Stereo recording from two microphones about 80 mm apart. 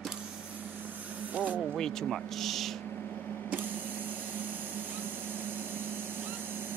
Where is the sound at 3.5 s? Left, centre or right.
Right.